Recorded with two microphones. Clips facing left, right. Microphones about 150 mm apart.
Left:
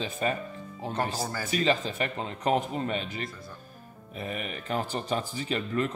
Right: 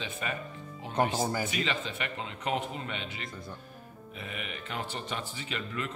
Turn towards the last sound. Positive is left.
turn(degrees=40)  # may be behind; listen again after turning